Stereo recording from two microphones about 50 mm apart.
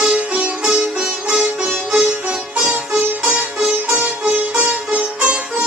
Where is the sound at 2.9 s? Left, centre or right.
Centre.